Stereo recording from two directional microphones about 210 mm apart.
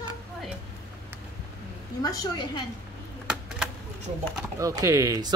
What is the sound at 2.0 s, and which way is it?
Speech, 20° left (ahead or behind).